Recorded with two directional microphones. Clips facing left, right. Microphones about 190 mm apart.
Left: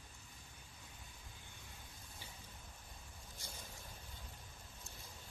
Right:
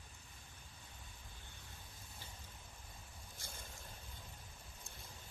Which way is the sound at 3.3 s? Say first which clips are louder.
Left 1 dB; 55° right (ahead or behind).